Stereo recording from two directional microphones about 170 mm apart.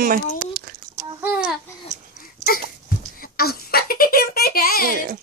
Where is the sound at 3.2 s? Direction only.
60° left (ahead or behind).